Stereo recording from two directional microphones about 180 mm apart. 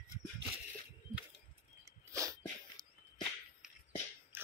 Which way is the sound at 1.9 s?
15° right (ahead or behind).